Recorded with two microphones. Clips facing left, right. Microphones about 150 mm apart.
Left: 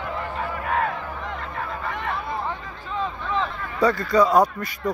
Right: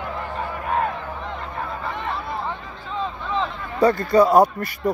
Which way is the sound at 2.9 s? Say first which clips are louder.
Even; 30° right (ahead or behind).